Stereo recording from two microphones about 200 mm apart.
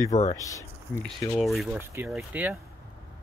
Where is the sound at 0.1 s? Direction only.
35° left (ahead or behind).